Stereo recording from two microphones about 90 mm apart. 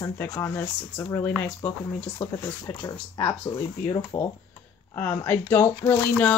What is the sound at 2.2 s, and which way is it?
Speech, 50° left (ahead or behind).